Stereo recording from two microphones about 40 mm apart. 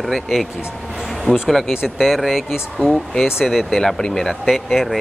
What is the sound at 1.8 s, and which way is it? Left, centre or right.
Speech, centre.